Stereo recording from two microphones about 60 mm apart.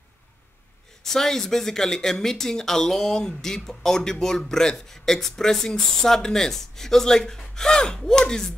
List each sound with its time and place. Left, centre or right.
1.0 s speech: centre